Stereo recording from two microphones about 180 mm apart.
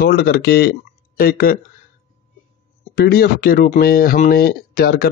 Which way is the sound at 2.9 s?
60° left (ahead or behind).